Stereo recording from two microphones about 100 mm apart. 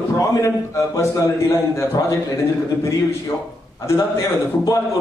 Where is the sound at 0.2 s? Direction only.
35° left (ahead or behind).